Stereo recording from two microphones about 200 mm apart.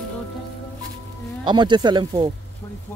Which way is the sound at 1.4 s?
20° right (ahead or behind).